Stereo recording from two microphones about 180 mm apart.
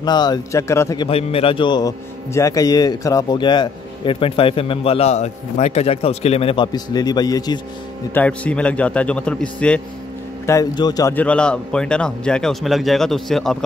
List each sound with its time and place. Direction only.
0.0 s a man's voice: 25° left (ahead or behind)
1.0 s a man's voice: 30° left (ahead or behind)
8.1 s a man's voice: 10° left (ahead or behind)
10.4 s a man's voice: 20° left (ahead or behind)
11.1 s speech: 5° left (ahead or behind)